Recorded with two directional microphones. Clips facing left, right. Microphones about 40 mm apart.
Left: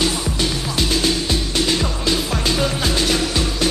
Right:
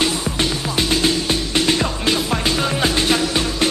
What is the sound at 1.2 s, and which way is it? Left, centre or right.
Music, right.